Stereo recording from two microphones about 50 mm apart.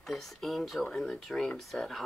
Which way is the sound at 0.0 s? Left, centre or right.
Centre.